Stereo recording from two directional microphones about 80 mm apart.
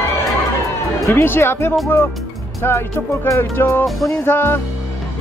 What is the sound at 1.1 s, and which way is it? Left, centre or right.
Speech, left.